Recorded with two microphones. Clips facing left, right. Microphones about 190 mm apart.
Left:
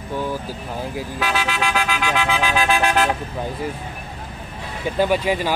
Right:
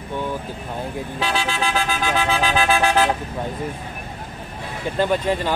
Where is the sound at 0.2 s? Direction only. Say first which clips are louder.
Even; 5° left (ahead or behind).